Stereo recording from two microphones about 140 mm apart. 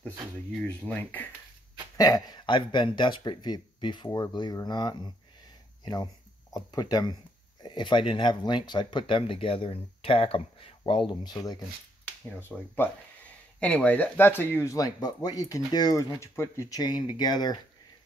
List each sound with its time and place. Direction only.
0.7 s speech: 10° left (ahead or behind)
2.0 s speech: 25° left (ahead or behind)
6.5 s speech: 25° left (ahead or behind)
12.0 s speech: 15° left (ahead or behind); by 17.6 s 30° left (ahead or behind)